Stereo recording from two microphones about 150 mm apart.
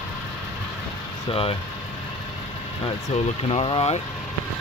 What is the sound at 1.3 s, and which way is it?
Speech, 40° left (ahead or behind).